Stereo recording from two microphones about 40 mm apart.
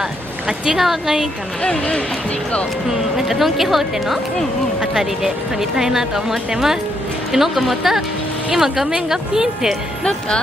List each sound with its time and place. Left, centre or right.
0.5 s speech: centre
1.6 s speech: left
2.9 s speech: centre